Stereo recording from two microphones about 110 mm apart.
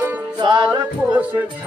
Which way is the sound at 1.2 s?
15° right (ahead or behind).